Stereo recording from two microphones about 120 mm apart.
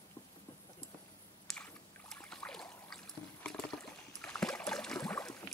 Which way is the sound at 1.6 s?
10° left (ahead or behind).